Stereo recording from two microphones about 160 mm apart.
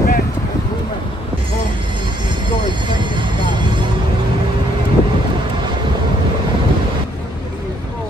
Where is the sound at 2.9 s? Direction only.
30° right (ahead or behind).